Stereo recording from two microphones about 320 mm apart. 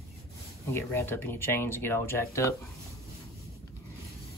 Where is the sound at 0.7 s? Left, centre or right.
Centre.